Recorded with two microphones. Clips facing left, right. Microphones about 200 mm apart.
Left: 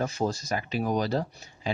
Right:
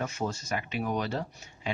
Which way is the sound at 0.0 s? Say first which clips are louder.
Left 4 dB; 35° left (ahead or behind).